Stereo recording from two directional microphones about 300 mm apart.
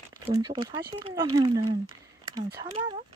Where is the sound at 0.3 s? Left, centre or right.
Centre.